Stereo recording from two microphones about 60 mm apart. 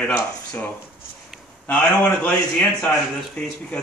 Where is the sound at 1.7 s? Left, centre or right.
Left.